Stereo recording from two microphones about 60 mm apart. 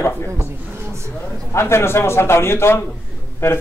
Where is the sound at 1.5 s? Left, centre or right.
Left.